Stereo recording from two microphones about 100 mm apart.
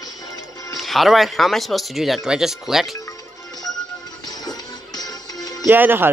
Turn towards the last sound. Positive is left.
turn(degrees=-20)  # may be behind; listen again after turning